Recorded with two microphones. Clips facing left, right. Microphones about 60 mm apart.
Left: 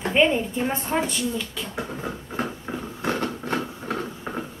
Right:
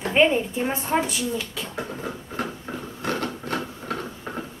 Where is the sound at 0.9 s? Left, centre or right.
Centre.